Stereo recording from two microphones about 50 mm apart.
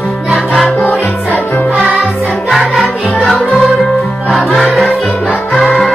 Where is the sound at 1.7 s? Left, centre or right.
Centre.